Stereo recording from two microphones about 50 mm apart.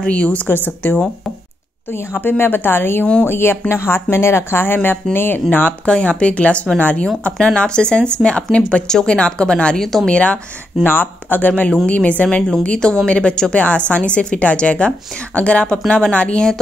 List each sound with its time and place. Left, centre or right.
0.0 s a woman's voice: left
0.5 s speech: left
2.2 s speech: left
5.9 s a woman's voice: left
10.8 s a woman's voice: left
12.6 s a woman's voice: centre